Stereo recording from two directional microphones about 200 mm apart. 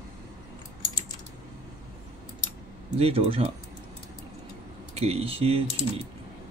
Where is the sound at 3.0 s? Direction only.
30° right (ahead or behind).